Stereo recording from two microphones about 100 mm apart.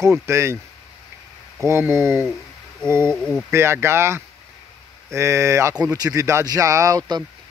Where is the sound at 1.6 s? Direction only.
30° right (ahead or behind).